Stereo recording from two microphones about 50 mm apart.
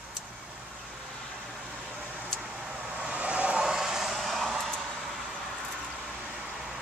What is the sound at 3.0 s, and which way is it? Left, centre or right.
Vehicle, right.